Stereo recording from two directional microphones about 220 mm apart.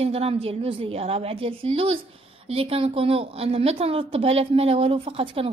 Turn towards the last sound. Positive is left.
turn(degrees=-25)  # may be behind; listen again after turning